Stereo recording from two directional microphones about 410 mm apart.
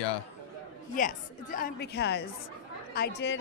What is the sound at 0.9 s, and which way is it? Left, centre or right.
A woman's voice, centre.